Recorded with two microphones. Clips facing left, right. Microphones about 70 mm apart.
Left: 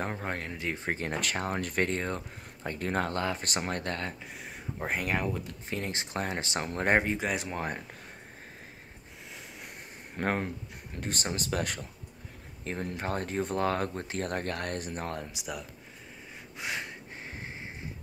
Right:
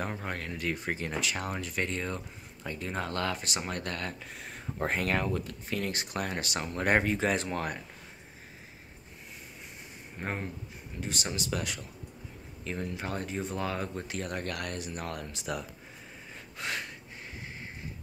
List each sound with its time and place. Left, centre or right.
0.0 s speech: left
3.1 s speech: left
3.4 s speech: left
4.8 s speech: centre
7.2 s speech: centre
10.1 s speech: left
11.0 s speech: left
15.3 s speech: centre
16.5 s a sound: centre